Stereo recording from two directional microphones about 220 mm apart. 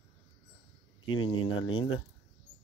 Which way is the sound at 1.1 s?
25° left (ahead or behind).